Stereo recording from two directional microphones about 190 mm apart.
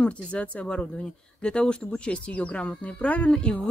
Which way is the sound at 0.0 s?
5° left (ahead or behind).